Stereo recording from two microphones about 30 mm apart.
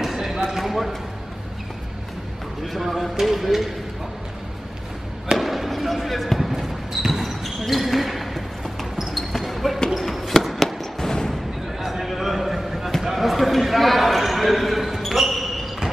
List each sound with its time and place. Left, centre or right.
0.0 s a sound: centre
2.6 s speech: centre
5.4 s basketball bounce: centre
11.0 s artillery fire: centre
11.8 s a sound: centre
13.0 s basketball bounce: centre